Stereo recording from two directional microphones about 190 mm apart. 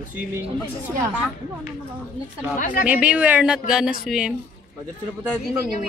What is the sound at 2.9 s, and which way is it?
Speech, 5° right (ahead or behind).